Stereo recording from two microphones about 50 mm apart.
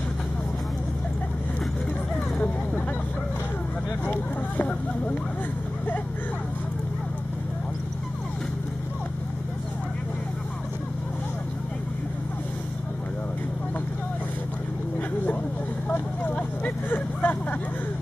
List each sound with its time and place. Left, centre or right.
4.0 s a sound: left
16.3 s vehicle: left
16.9 s vehicle: left